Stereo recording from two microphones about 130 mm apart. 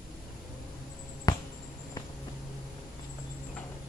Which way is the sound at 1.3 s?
30° left (ahead or behind).